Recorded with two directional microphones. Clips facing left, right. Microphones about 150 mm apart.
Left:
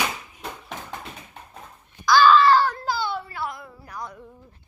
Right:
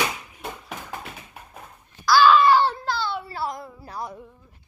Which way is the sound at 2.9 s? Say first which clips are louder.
Left 1 dB; 10° left (ahead or behind).